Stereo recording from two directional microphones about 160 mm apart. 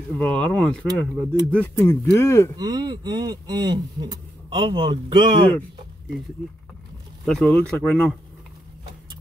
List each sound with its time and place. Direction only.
0.2 s speech: 10° left (ahead or behind)
2.5 s speech: 25° right (ahead or behind)
7.2 s speech: 5° left (ahead or behind)